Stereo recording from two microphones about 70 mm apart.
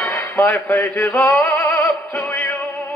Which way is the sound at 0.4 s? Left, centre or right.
Left.